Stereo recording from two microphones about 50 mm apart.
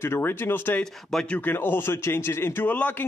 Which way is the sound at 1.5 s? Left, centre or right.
Left.